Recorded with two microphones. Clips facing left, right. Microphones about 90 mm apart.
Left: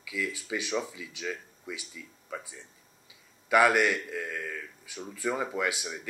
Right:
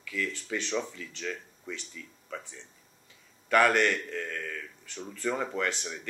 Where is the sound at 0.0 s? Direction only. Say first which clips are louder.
Even; 10° left (ahead or behind).